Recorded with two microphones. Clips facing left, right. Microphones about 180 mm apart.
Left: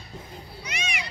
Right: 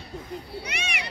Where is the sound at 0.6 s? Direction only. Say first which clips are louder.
Even; 60° right (ahead or behind).